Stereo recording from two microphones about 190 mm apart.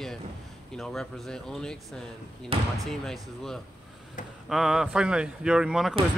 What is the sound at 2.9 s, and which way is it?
Speech, centre (ahead or behind).